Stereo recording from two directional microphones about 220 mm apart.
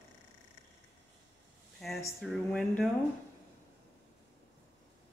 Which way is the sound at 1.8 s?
Centre (ahead or behind).